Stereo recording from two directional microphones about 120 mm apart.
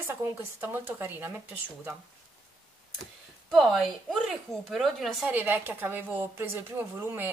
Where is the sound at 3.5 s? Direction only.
Centre (ahead or behind).